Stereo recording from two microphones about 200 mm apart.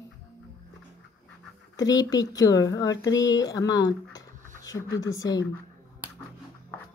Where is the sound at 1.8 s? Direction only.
20° left (ahead or behind).